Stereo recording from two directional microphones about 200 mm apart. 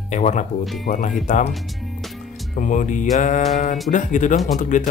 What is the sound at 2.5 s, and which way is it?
Speech, 40° left (ahead or behind).